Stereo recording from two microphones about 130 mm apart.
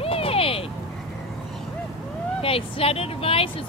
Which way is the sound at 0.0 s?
45° left (ahead or behind).